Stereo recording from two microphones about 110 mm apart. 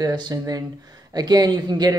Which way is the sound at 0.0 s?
40° right (ahead or behind).